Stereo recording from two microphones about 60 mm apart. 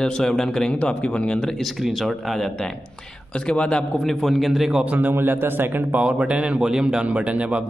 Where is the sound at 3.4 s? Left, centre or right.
Centre.